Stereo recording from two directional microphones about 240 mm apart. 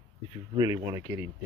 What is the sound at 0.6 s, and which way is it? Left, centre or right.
Speech, centre.